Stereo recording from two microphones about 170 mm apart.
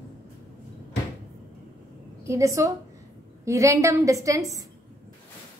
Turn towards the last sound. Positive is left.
turn(degrees=-20)  # may be behind; listen again after turning